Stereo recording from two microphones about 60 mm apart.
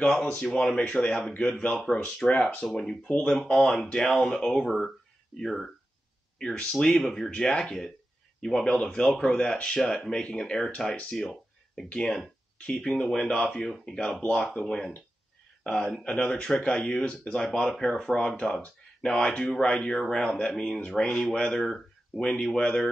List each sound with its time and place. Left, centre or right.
0.0 s speech: centre
6.3 s speech: centre
17.4 s speech: centre
18.3 s speech: left